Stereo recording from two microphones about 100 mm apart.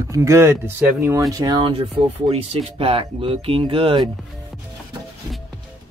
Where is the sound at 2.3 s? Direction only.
65° right (ahead or behind).